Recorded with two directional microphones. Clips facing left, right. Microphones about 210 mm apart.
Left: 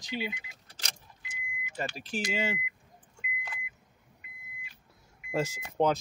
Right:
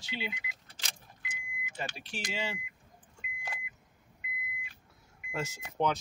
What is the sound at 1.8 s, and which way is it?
Speech, 40° left (ahead or behind).